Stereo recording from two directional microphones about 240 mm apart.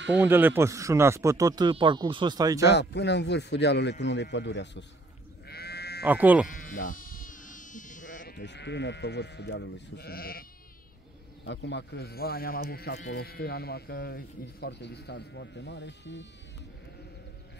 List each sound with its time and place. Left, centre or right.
0.2 s speech: centre
2.6 s speech: left
5.5 s sheep: left
6.0 s speech: centre
6.5 s speech: left
11.4 s speech: left